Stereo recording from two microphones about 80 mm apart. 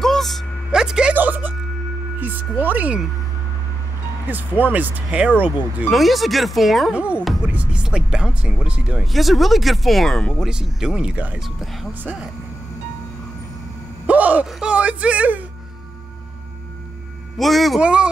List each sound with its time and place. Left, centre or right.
0.0 s vehicle: centre
0.7 s a sound: centre
1.1 s speech: right
4.3 s speech: right
5.9 s speech: centre
6.9 s speech: centre
9.0 s speech: centre
10.4 s speech: centre
11.4 s speech: centre
14.0 s a sound: centre
17.4 s speech: centre
17.7 s speech: centre